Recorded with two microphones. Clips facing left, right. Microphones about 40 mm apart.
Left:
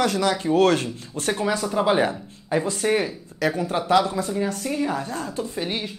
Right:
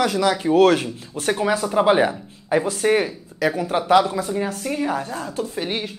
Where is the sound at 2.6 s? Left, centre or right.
Centre.